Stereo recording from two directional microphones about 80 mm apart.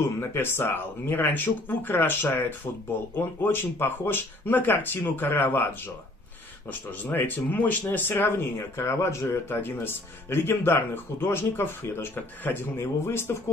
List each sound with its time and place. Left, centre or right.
0.2 s speech: left
6.9 s speech: left